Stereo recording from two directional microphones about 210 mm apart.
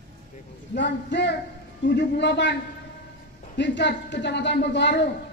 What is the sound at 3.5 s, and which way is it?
Speech, 55° left (ahead or behind).